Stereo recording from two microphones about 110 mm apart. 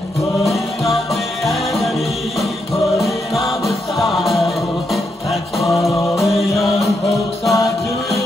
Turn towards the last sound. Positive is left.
turn(degrees=30)  # may be behind; listen again after turning